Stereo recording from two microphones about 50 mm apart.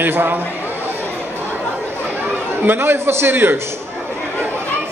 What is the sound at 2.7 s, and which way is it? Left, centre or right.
Speech, right.